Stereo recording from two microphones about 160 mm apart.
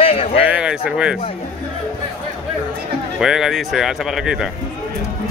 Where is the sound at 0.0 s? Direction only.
40° left (ahead or behind).